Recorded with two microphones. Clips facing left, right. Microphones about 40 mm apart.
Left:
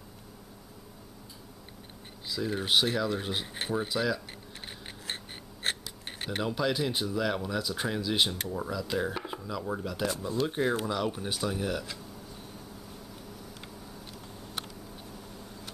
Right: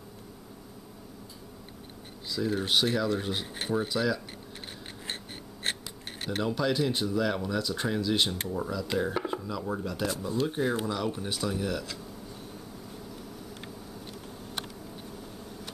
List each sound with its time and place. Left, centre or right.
2.2 s speech: centre
5.0 s a sound: centre
6.2 s speech: centre